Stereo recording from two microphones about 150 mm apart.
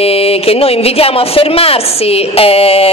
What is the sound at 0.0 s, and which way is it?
Speech, 40° left (ahead or behind).